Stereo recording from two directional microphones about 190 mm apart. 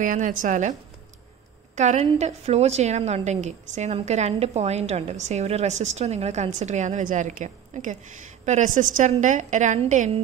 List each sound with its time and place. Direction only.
0.0 s a woman's voice: 45° right (ahead or behind)
1.8 s a woman's voice: 35° right (ahead or behind)